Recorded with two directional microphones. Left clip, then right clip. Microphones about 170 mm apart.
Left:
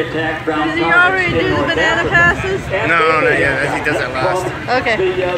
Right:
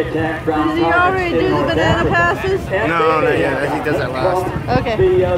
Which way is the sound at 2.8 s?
45° right (ahead or behind).